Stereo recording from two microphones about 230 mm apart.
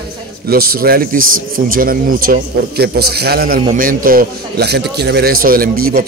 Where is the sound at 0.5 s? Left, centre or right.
Right.